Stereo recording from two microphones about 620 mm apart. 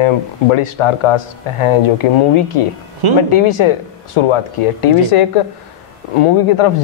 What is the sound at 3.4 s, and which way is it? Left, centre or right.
Speech, left.